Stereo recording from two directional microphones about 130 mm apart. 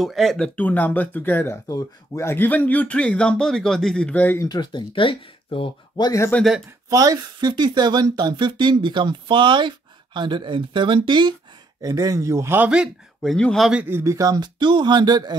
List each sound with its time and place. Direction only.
0.0 s speech: centre (ahead or behind)
0.6 s speech: 15° left (ahead or behind)
4.5 s speech: 35° left (ahead or behind)
6.3 s speech: centre (ahead or behind)
6.9 s a man's voice: 30° right (ahead or behind); by 13.7 s 5° left (ahead or behind)
13.7 s speech: 15° right (ahead or behind); by 15.3 s 30° right (ahead or behind)